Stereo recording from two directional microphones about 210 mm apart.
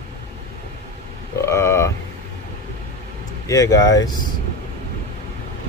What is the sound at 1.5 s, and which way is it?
Speech, 15° left (ahead or behind).